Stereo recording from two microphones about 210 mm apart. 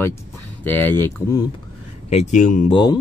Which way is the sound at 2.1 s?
35° left (ahead or behind).